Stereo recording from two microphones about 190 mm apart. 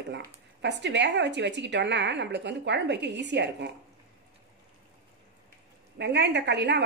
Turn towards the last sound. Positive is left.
turn(degrees=-65)  # may be behind; listen again after turning